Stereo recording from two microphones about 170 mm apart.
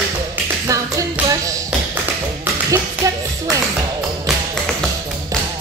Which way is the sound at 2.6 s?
20° right (ahead or behind).